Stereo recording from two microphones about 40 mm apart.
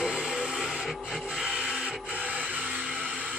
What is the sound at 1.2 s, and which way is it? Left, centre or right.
Printer, right.